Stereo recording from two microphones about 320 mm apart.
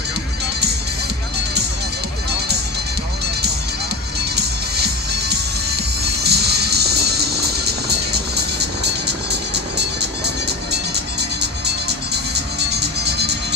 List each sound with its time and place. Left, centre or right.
6.2 s music: right
12.5 s music: right